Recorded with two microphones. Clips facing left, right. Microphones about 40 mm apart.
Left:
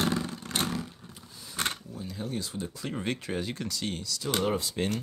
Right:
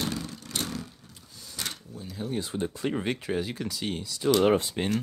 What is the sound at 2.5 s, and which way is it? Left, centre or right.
Speech, right.